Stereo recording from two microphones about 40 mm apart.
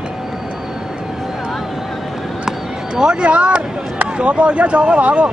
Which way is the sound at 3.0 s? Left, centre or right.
Right.